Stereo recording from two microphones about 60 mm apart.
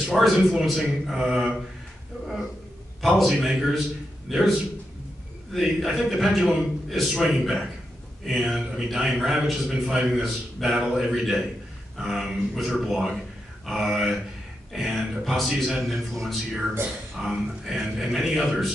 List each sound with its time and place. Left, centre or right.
0.0 s a man's voice: centre
3.0 s a man's voice: centre
5.5 s a man's voice: centre